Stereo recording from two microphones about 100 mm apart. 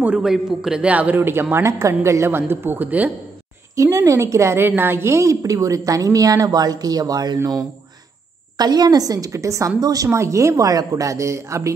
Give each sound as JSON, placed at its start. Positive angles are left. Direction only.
{"t": 0.0, "sound": "a man's voice", "side_deg": -10}
{"t": 3.7, "sound": "a woman's voice", "side_deg": -30}
{"t": 8.5, "sound": "a woman's voice", "side_deg": -40}